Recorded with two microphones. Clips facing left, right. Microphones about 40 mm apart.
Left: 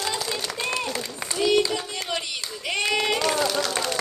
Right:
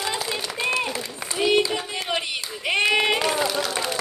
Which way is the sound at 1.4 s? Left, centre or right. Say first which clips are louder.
Right 1 dB; right.